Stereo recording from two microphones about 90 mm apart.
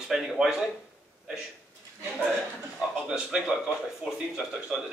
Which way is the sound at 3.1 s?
5° right (ahead or behind).